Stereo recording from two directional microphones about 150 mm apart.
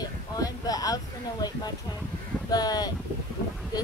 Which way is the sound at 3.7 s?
25° left (ahead or behind).